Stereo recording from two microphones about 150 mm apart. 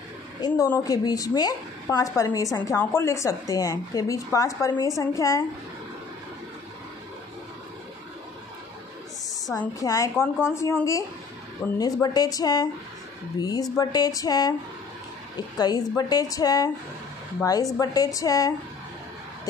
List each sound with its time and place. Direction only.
0.4 s a woman's voice: 25° left (ahead or behind)
9.8 s a woman's voice: 20° left (ahead or behind)
15.5 s a woman's voice: 25° left (ahead or behind)